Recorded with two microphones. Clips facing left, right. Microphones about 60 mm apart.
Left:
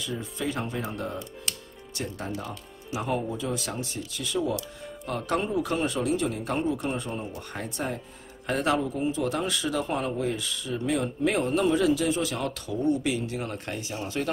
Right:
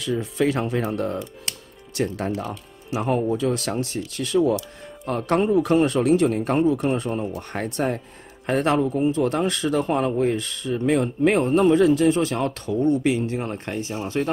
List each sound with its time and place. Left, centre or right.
0.0 s speech: right
5.0 s speech: right
8.5 s a man's voice: right